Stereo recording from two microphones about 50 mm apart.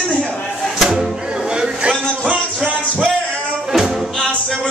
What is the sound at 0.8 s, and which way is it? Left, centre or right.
Music, centre.